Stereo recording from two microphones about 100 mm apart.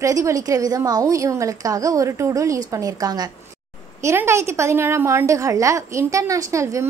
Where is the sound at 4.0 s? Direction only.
25° right (ahead or behind).